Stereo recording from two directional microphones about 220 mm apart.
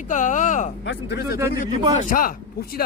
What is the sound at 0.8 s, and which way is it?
Speech, 50° left (ahead or behind).